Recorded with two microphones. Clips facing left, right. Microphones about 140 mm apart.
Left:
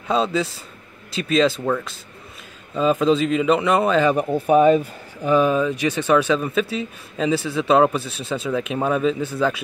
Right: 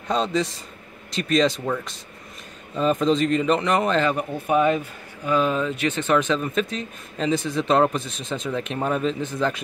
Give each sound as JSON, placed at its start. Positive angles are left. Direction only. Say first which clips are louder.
{"t": 0.1, "sound": "speech", "louder": "left 2 dB", "side_deg": 5}
{"t": 3.0, "sound": "speech", "louder": "left 2 dB", "side_deg": 5}
{"t": 4.5, "sound": "speech", "louder": "left 5 dB", "side_deg": 35}
{"t": 5.2, "sound": "speech", "louder": "left 4 dB", "side_deg": 20}